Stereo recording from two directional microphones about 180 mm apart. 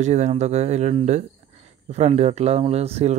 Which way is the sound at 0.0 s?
40° right (ahead or behind).